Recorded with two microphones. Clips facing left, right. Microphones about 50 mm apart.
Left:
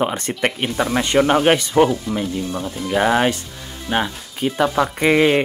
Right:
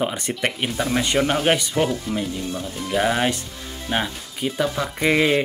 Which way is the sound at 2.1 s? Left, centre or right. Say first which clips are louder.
Left 2 dB; centre.